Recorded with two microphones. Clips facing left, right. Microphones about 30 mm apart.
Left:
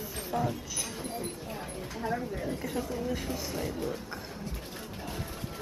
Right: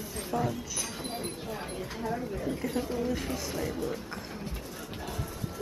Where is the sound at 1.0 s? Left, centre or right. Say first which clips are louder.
Right 1 dB; right.